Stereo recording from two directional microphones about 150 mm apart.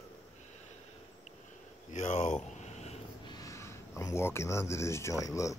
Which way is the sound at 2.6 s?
45° left (ahead or behind).